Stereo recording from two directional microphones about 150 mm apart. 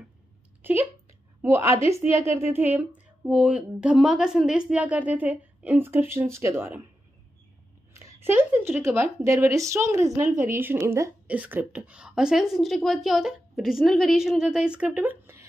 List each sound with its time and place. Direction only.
0.6 s a sound: 15° right (ahead or behind)
1.4 s a woman's voice: 20° right (ahead or behind)
7.9 s a woman's voice: 20° right (ahead or behind)